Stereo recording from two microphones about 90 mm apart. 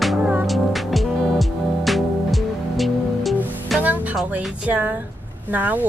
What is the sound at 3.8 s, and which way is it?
Music, 20° right (ahead or behind).